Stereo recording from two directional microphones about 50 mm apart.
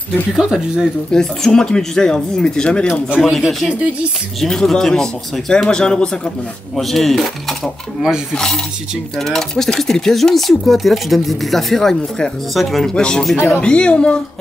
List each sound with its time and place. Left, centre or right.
0.4 s speech: centre
1.1 s a man's voice: centre
3.2 s a man's voice: centre
6.8 s speech: centre
9.2 s speech: centre